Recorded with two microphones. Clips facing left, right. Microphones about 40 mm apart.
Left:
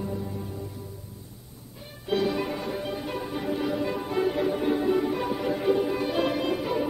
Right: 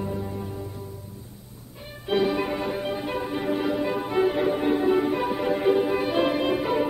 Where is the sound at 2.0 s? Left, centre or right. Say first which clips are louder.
Right 3 dB; right.